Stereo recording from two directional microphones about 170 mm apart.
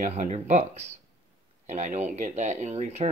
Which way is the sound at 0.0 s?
45° right (ahead or behind).